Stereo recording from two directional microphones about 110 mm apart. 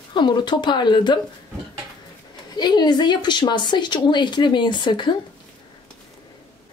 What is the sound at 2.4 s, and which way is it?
A woman's voice, 40° left (ahead or behind).